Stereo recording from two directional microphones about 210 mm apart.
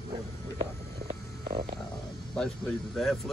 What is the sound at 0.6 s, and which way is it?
Stomach rumble, 30° right (ahead or behind).